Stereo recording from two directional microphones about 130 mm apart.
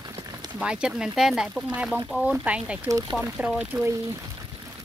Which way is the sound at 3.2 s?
10° right (ahead or behind).